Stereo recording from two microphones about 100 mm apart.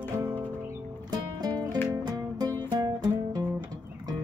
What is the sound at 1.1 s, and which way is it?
Music, 40° right (ahead or behind).